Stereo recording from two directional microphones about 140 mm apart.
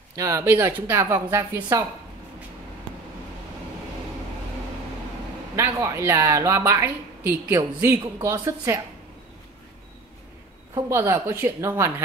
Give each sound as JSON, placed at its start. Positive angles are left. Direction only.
{"t": 0.1, "sound": "a woman's voice", "side_deg": -20}
{"t": 5.6, "sound": "a woman's voice", "side_deg": -20}
{"t": 10.7, "sound": "a woman's voice", "side_deg": -20}